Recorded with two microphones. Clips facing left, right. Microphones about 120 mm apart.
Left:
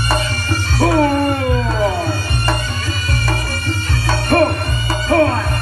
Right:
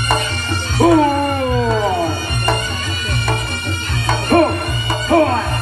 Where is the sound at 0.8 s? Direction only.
15° right (ahead or behind).